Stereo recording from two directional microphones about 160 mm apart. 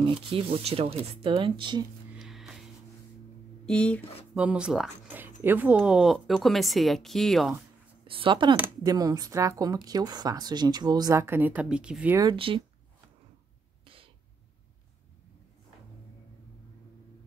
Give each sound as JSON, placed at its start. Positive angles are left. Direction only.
{"t": 0.0, "sound": "speech", "side_deg": -35}
{"t": 2.1, "sound": "music", "side_deg": -5}
{"t": 3.6, "sound": "speech", "side_deg": 5}
{"t": 4.3, "sound": "a woman's voice", "side_deg": -5}
{"t": 5.4, "sound": "a woman's voice", "side_deg": -10}
{"t": 8.1, "sound": "speech", "side_deg": -30}
{"t": 12.2, "sound": "speech", "side_deg": -30}
{"t": 13.8, "sound": "a sound", "side_deg": -35}